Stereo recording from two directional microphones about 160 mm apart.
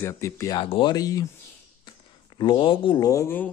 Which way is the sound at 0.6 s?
30° left (ahead or behind).